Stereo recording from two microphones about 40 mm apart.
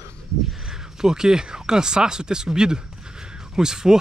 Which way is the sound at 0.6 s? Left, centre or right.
Centre.